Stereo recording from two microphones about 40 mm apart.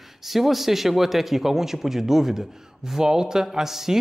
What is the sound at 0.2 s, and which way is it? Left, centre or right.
Speech, centre.